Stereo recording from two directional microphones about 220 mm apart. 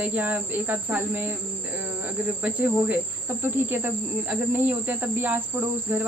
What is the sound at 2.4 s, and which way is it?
Speech, 10° right (ahead or behind).